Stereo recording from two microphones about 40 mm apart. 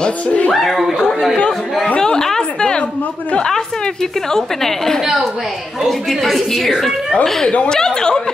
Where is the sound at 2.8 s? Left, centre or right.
Left.